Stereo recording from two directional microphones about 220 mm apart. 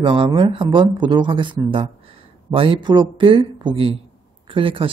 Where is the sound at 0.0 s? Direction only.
20° right (ahead or behind).